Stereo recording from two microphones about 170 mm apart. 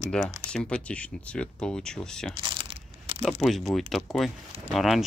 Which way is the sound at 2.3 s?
30° right (ahead or behind).